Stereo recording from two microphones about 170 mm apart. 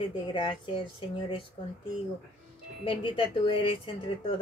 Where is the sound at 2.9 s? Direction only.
30° left (ahead or behind).